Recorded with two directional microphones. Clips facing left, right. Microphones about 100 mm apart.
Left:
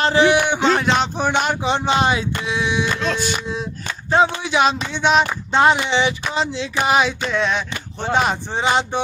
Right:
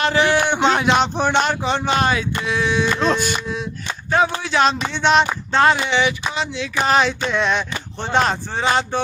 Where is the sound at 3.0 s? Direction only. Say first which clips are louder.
Right 3 dB; 50° right (ahead or behind).